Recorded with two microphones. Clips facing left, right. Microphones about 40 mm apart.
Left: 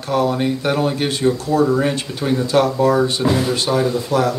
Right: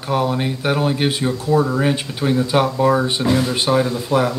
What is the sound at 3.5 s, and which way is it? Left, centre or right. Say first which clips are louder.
Speech: even; centre.